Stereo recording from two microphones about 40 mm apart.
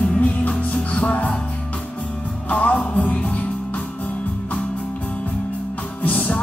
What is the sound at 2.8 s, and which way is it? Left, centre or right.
Music, left.